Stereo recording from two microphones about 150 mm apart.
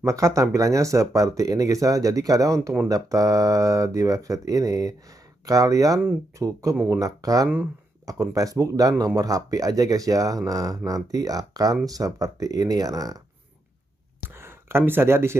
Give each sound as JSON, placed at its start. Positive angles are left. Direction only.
{"t": 0.0, "sound": "speech", "side_deg": -20}
{"t": 14.4, "sound": "speech", "side_deg": -15}